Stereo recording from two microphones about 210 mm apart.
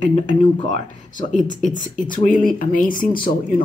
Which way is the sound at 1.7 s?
40° left (ahead or behind).